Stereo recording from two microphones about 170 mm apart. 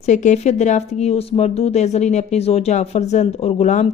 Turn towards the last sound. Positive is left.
turn(degrees=45)  # may be behind; listen again after turning